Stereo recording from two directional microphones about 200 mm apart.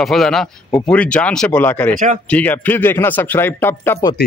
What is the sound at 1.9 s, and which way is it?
Speech, 40° right (ahead or behind).